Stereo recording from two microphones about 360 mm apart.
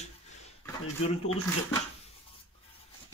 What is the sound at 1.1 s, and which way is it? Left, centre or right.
Speech, centre.